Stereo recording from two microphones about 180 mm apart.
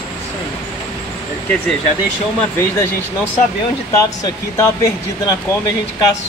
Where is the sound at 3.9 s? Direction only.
15° left (ahead or behind).